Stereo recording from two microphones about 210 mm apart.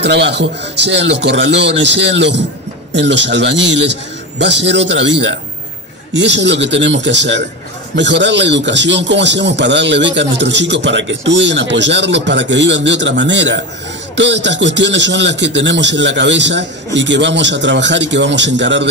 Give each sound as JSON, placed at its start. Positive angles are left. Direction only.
{"t": 0.0, "sound": "a man's voice", "side_deg": -55}